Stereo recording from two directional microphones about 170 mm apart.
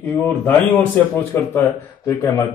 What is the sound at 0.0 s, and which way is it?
Speech, 10° left (ahead or behind).